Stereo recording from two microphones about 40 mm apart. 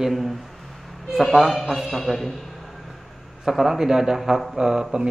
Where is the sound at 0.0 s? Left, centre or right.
Centre.